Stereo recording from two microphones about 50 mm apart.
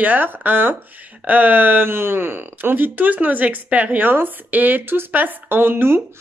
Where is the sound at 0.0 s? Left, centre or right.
Right.